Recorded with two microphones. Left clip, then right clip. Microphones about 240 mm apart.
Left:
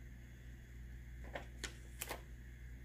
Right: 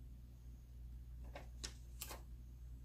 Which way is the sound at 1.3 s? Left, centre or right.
Left.